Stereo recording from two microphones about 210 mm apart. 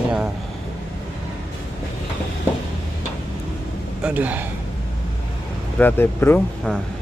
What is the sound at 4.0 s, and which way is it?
Speech, 10° right (ahead or behind).